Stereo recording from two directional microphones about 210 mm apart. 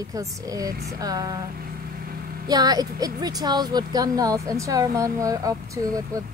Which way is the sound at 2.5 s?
20° right (ahead or behind).